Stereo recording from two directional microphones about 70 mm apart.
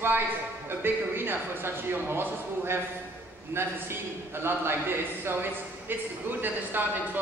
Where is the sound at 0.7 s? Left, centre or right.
Right.